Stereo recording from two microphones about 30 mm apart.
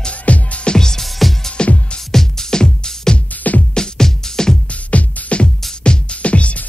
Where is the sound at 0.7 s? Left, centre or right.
Left.